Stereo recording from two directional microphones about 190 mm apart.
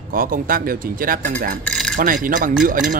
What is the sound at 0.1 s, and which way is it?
Speech, 50° right (ahead or behind).